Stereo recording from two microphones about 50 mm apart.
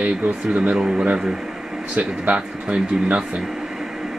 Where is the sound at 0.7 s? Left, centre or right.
Centre.